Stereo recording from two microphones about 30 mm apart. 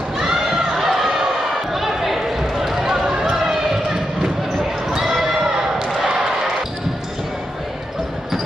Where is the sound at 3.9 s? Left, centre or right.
Centre.